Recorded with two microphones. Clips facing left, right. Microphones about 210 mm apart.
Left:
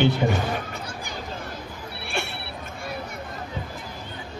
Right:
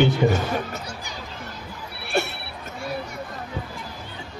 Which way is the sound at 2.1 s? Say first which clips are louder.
Right 7 dB; 40° right (ahead or behind).